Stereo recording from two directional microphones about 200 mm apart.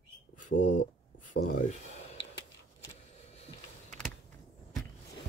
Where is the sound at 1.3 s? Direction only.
45° left (ahead or behind).